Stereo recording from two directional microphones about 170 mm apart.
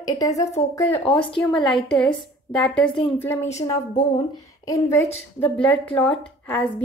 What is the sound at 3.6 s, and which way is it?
A woman's voice, 25° left (ahead or behind).